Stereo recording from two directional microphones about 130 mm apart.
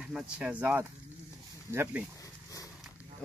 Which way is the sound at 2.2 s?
25° left (ahead or behind).